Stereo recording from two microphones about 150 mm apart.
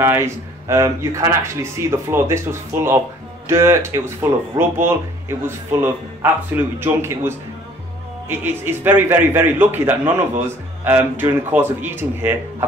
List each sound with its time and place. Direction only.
0.0 s speech: 15° right (ahead or behind)